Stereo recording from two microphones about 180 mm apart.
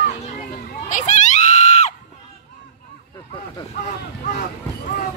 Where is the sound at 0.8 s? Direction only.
45° left (ahead or behind).